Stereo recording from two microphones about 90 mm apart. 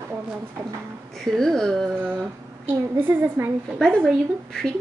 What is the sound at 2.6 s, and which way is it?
A woman's voice, 20° right (ahead or behind).